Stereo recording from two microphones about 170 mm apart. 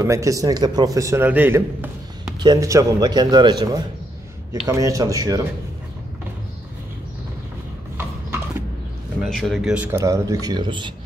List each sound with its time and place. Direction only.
0.0 s speech: 20° right (ahead or behind)
9.2 s speech: centre (ahead or behind); by 10.9 s 25° right (ahead or behind)